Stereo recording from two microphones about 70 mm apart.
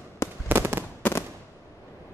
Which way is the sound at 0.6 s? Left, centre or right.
Right.